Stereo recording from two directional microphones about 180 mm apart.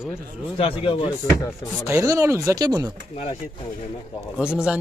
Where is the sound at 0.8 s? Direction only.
30° left (ahead or behind).